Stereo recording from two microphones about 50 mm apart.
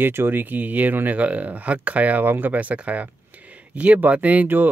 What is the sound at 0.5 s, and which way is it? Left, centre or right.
Speech, right.